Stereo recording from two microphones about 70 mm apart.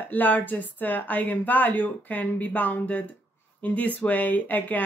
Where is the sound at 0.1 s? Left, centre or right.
Left.